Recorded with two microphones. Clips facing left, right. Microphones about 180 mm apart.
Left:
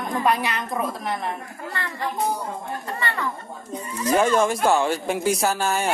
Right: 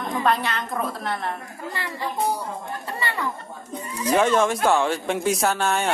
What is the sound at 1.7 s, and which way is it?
Speech, 15° right (ahead or behind).